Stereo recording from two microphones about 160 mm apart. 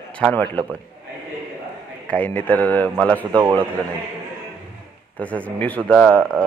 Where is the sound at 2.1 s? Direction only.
10° left (ahead or behind).